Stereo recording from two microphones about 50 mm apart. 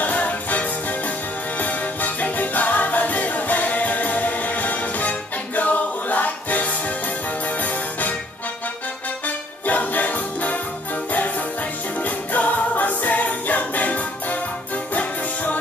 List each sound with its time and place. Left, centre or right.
0.0 s music: left
9.7 s music: left